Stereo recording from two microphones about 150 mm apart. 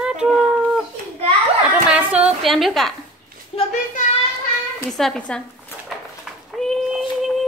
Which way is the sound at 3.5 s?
40° left (ahead or behind).